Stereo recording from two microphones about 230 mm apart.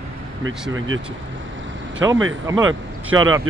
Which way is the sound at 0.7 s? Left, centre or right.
Right.